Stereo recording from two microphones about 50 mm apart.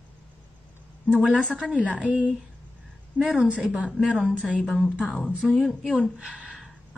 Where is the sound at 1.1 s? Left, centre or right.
Right.